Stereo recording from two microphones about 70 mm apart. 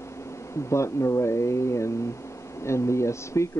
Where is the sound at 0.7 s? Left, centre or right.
Left.